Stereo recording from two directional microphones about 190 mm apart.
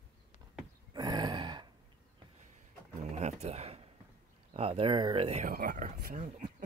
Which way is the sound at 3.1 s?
35° right (ahead or behind).